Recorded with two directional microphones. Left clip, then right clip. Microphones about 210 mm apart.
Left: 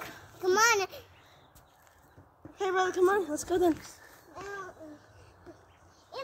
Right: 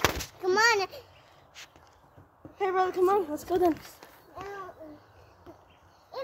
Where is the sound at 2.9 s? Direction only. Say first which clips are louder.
Right 1 dB; 10° left (ahead or behind).